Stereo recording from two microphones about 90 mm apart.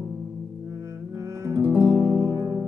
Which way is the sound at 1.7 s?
35° right (ahead or behind).